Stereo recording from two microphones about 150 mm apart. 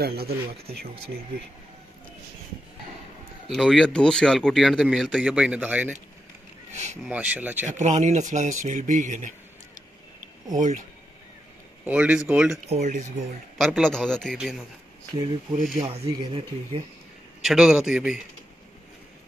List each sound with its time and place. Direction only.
0.0 s speech: 90° right
3.4 s speech: centre (ahead or behind)
6.7 s a sound: 50° right (ahead or behind)
7.1 s speech: 10° right (ahead or behind)
7.6 s speech: 50° right (ahead or behind)
10.5 s speech: 55° right (ahead or behind)
11.8 s speech: 10° right (ahead or behind)
12.6 s speech: 50° right (ahead or behind)
13.6 s a man's voice: 5° right (ahead or behind)
13.8 s speech: 5° left (ahead or behind)
15.7 s speech: 55° right (ahead or behind)
16.3 s speech: 35° right (ahead or behind)
17.4 s speech: 5° right (ahead or behind)